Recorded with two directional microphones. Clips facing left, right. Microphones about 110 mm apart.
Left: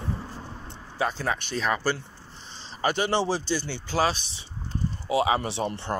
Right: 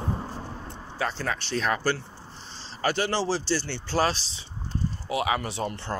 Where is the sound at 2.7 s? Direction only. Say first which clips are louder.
Left 1 dB; 20° left (ahead or behind).